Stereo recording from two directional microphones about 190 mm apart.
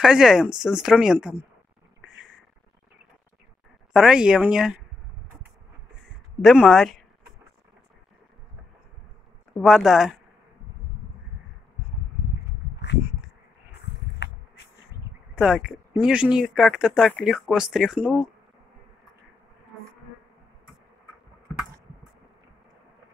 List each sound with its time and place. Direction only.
0.0 s speech: 5° right (ahead or behind)
3.9 s speech: 5° right (ahead or behind)
6.4 s speech: centre (ahead or behind)
9.5 s speech: centre (ahead or behind)
14.2 s bee: 65° left (ahead or behind)
15.3 s speech: 5° right (ahead or behind)